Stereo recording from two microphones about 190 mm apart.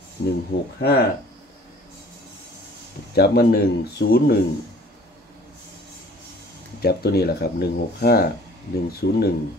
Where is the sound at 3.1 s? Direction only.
55° left (ahead or behind).